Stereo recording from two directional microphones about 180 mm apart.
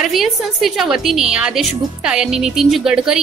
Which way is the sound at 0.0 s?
Centre (ahead or behind).